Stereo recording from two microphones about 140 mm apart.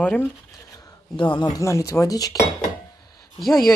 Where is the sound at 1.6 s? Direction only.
20° left (ahead or behind).